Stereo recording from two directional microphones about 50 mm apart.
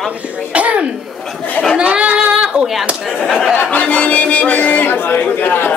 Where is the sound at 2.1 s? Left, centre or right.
Centre.